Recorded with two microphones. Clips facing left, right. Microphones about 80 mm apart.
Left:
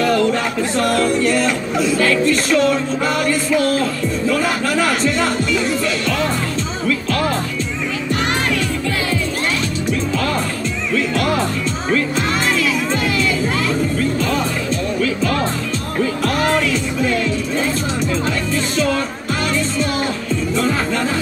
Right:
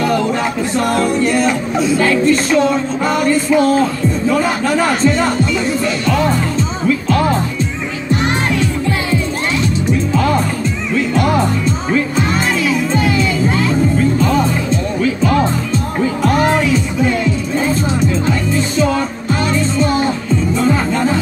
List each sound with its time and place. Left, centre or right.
0.0 s speech: centre
9.8 s music: right
19.8 s music: right